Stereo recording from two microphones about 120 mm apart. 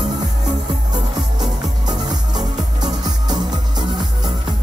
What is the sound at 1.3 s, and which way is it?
Music, 35° right (ahead or behind).